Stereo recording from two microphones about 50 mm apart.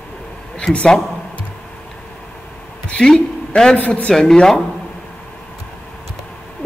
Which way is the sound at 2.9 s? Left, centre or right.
Centre.